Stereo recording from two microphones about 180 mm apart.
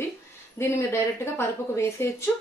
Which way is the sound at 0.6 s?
15° left (ahead or behind).